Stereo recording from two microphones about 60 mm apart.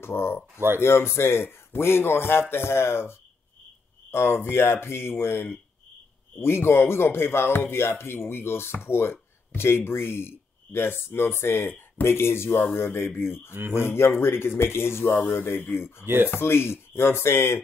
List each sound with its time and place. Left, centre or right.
0.0 s speech: left